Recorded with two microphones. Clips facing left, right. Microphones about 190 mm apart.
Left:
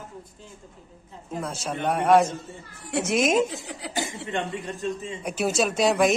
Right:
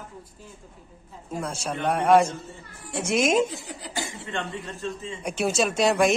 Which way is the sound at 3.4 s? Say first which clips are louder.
Left 1 dB; 65° left (ahead or behind).